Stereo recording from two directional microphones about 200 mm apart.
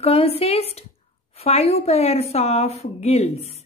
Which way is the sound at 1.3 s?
30° left (ahead or behind).